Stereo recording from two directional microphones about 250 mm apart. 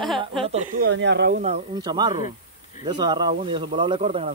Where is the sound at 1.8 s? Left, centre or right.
Centre.